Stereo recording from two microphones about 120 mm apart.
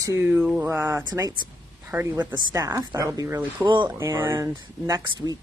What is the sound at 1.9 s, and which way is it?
Speech, 20° right (ahead or behind).